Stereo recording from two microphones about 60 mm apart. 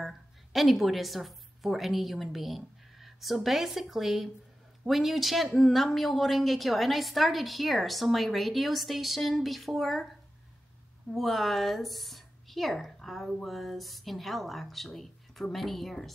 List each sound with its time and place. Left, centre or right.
0.0 s a woman's voice: centre
11.1 s speech: centre